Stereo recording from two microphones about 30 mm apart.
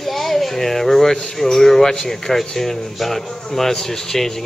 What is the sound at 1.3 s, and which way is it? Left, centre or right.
Speech, centre.